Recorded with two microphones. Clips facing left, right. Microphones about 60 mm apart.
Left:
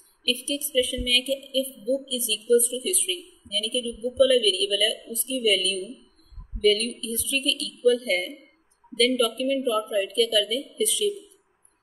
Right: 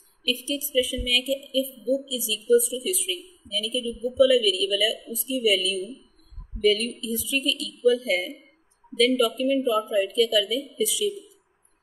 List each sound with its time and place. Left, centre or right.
0.2 s a woman's voice: centre